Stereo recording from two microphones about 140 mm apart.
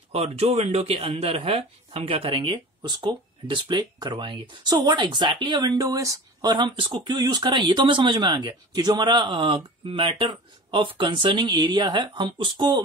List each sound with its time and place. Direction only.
0.1 s speech: 45° right (ahead or behind); by 12.8 s 30° right (ahead or behind)